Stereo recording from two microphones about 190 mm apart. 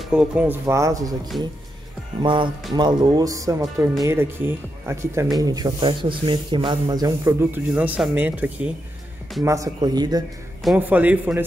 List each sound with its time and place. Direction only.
0.0 s speech: 5° right (ahead or behind)
1.3 s speech: centre (ahead or behind)
2.2 s speech: 25° right (ahead or behind)
10.6 s speech: 5° right (ahead or behind)